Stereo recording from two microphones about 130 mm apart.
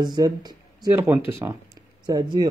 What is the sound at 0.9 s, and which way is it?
Speech, 20° right (ahead or behind).